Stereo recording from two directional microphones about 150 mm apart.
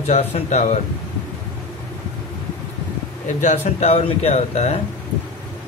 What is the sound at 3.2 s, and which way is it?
Speech, 50° left (ahead or behind).